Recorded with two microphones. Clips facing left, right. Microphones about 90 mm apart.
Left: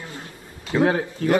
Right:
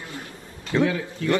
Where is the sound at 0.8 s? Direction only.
40° left (ahead or behind).